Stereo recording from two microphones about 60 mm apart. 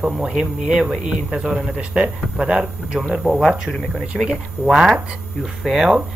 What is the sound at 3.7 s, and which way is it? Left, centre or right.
Speech, centre.